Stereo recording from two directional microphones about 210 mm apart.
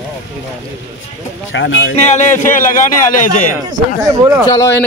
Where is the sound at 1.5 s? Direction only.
60° left (ahead or behind).